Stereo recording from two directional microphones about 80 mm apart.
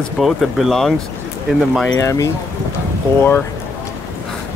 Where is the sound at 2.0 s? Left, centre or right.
Left.